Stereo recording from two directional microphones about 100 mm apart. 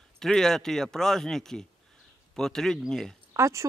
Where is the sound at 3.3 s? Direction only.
30° right (ahead or behind).